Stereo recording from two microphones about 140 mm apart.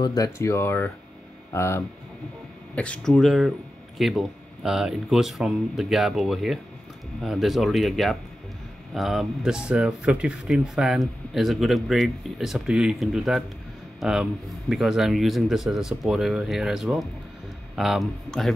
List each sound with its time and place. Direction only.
0.0 s speech: 25° left (ahead or behind)
2.7 s speech: 10° left (ahead or behind)